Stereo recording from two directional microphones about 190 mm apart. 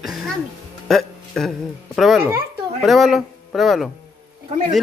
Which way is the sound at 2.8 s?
Centre (ahead or behind).